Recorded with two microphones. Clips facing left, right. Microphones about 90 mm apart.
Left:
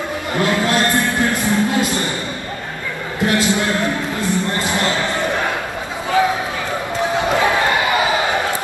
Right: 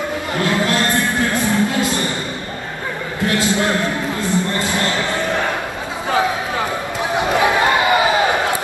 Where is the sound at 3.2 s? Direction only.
20° left (ahead or behind).